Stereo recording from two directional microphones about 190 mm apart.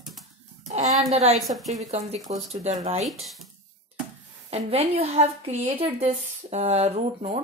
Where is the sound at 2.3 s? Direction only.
35° right (ahead or behind).